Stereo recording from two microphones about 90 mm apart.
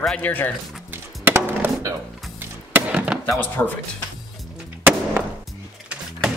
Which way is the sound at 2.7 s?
10° right (ahead or behind).